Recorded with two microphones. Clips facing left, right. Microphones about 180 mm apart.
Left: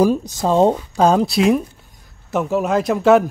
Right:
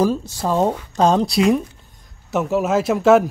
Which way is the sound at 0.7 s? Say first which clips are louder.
Left 1 dB; 10° left (ahead or behind).